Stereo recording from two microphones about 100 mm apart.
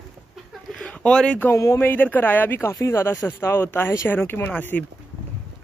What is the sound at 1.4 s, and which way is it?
Speech, 30° left (ahead or behind).